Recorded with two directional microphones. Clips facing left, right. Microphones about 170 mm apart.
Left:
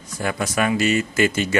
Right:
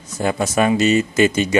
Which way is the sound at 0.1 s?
25° right (ahead or behind).